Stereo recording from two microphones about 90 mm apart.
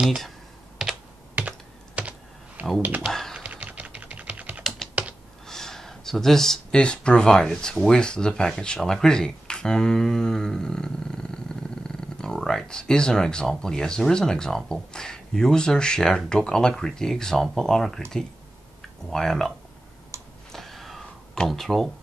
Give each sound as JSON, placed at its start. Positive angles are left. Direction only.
{"t": 0.0, "sound": "speech", "side_deg": -5}
{"t": 0.8, "sound": "computer keyboard", "side_deg": -5}
{"t": 3.1, "sound": "typing", "side_deg": 5}
{"t": 3.3, "sound": "typing", "side_deg": -15}
{"t": 5.5, "sound": "speech", "side_deg": 5}
{"t": 20.1, "sound": "tick", "side_deg": -30}
{"t": 20.5, "sound": "a sound", "side_deg": 0}